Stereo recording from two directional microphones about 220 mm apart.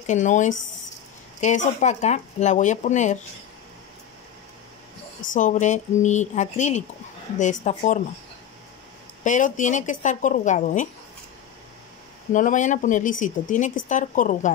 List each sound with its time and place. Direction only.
0.0 s speech: 35° left (ahead or behind)
5.2 s speech: 35° left (ahead or behind)
9.2 s speech: 35° left (ahead or behind)
12.3 s speech: 35° left (ahead or behind)